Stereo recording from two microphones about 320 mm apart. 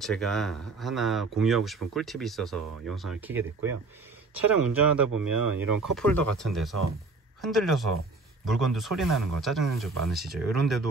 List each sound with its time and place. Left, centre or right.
0.0 s speech: centre
4.7 s speech: centre
5.1 s speech: right
5.8 s speech: centre